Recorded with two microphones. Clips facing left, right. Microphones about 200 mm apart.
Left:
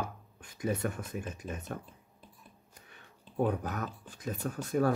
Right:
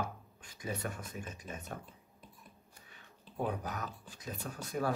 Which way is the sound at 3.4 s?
50° left (ahead or behind).